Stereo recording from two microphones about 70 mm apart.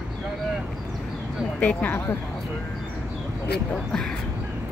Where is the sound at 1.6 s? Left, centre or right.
Left.